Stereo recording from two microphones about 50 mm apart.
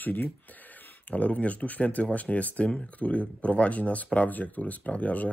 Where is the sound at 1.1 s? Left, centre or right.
Left.